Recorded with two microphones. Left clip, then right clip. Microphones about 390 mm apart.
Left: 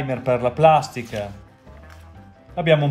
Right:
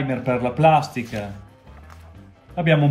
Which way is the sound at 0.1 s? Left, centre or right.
Centre.